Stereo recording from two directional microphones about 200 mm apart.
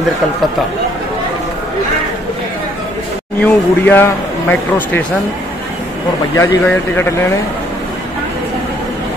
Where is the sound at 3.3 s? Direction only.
10° left (ahead or behind).